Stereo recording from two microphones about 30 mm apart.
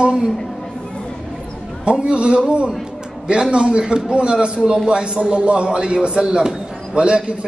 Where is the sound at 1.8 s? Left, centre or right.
Right.